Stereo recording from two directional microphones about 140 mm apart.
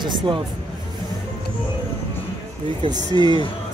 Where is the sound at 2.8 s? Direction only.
30° right (ahead or behind).